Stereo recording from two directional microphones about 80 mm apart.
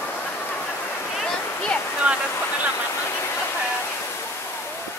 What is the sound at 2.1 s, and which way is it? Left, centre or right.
Waterfall, centre.